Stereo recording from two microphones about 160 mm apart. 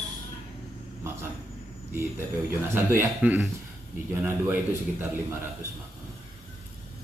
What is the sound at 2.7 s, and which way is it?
A man's voice, 15° right (ahead or behind).